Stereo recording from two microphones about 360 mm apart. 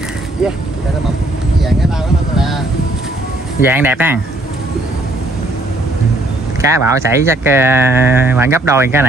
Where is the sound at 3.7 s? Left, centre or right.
Centre.